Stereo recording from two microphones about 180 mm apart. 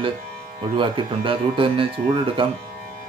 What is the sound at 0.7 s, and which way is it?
Speech, 25° right (ahead or behind).